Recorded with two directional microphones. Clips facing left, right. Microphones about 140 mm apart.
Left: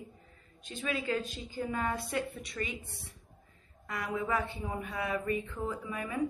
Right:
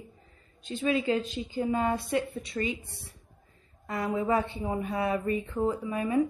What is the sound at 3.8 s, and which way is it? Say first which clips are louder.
Speech: right 6 dB; 30° right (ahead or behind).